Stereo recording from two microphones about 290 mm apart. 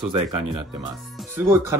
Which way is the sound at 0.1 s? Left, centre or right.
Right.